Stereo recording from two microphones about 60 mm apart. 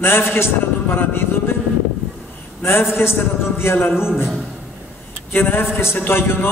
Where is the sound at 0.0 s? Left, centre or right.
Left.